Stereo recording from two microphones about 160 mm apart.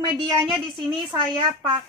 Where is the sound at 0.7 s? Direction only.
30° right (ahead or behind).